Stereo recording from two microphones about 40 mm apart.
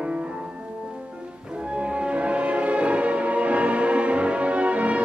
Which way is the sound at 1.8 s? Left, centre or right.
Right.